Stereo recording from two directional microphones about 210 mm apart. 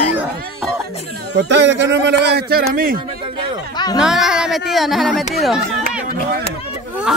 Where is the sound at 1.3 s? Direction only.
60° right (ahead or behind).